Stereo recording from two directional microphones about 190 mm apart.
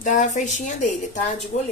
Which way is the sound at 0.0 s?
40° left (ahead or behind).